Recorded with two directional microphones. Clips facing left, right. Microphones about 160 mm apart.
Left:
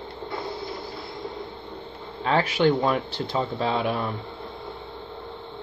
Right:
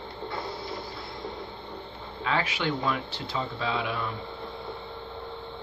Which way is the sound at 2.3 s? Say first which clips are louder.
Left 8 dB; 45° left (ahead or behind).